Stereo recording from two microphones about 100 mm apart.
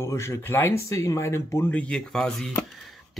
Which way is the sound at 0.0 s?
30° left (ahead or behind).